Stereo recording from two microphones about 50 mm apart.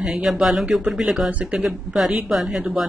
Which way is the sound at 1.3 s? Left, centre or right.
Right.